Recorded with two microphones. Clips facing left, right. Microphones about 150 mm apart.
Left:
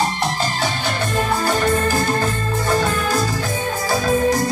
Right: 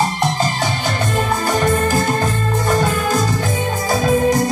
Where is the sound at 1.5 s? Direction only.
20° right (ahead or behind).